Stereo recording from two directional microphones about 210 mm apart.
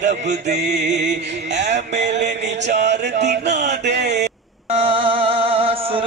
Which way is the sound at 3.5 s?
35° right (ahead or behind).